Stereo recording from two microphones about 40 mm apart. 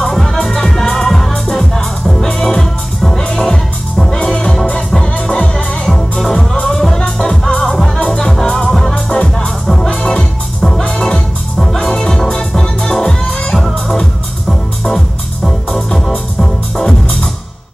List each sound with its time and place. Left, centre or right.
0.0 s music: centre
2.2 s music: centre
10.0 s music: centre